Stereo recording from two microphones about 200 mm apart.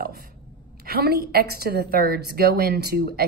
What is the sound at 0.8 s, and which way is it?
A woman's voice, 50° right (ahead or behind).